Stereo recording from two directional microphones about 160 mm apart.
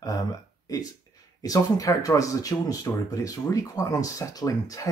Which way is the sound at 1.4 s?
20° left (ahead or behind).